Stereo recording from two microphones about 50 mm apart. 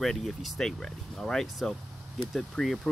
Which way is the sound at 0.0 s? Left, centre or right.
Centre.